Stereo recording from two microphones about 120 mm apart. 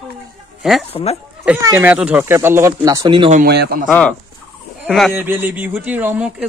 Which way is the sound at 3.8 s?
10° left (ahead or behind).